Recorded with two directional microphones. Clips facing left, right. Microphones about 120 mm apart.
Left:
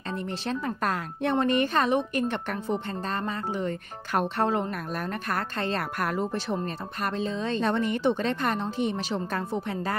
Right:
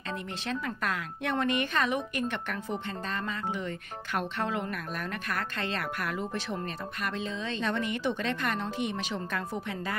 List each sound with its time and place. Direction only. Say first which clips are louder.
0.5 s a woman's voice: left 4 dB; 35° left (ahead or behind)